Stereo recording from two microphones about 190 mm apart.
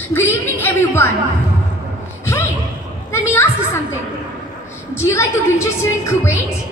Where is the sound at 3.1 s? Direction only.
15° left (ahead or behind).